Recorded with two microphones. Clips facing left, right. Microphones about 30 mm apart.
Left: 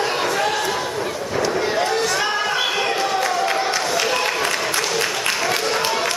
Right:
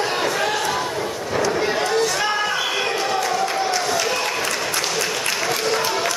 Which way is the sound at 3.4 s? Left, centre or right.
Left.